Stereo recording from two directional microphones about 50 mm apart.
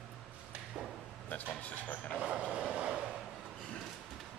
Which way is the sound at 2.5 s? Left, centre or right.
Right.